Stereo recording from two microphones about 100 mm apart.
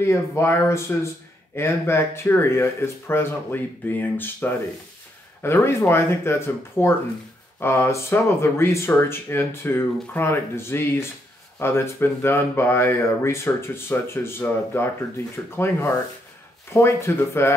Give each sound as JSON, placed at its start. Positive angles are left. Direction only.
{"t": 0.0, "sound": "speech", "side_deg": 25}